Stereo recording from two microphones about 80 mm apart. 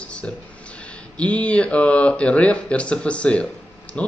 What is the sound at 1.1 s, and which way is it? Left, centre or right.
Speech, centre.